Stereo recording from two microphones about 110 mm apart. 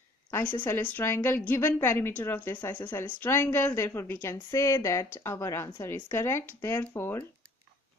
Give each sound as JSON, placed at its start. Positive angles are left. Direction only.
{"t": 0.7, "sound": "a woman's voice", "side_deg": 20}